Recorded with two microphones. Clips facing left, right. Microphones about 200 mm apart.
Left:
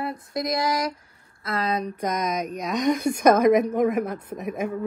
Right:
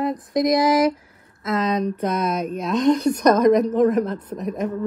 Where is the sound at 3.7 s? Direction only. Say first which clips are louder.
Right 4 dB; 10° left (ahead or behind).